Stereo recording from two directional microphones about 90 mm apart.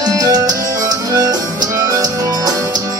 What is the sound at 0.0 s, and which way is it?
Music, 45° right (ahead or behind).